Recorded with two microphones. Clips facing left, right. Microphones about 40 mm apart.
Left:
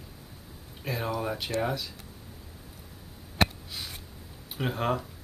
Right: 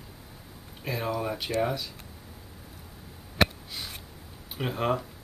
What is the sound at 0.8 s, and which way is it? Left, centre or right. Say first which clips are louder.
Speech: right 1 dB; centre.